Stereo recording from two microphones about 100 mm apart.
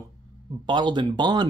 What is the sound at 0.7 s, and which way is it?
Speech, 50° right (ahead or behind).